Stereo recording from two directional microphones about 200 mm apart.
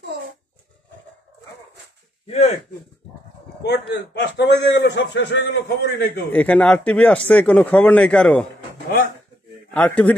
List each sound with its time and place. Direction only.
2.2 s speech: 30° left (ahead or behind)
3.6 s a man's voice: 55° left (ahead or behind)
6.3 s speech: 5° left (ahead or behind)
9.8 s speech: 10° left (ahead or behind)